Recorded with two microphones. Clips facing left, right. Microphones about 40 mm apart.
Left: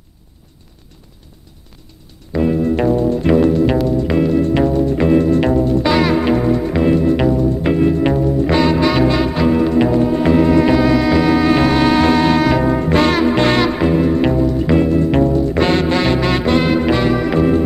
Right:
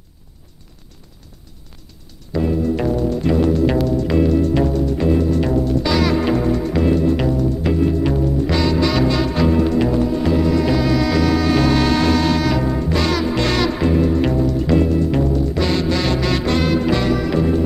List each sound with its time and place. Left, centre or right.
2.6 s music: left
3.8 s music: left
7.7 s music: left